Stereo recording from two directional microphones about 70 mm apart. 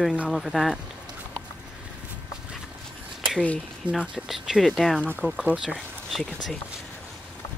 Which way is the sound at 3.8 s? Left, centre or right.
Centre.